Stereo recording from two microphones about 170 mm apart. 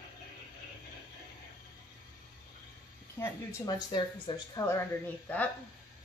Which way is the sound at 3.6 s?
25° left (ahead or behind).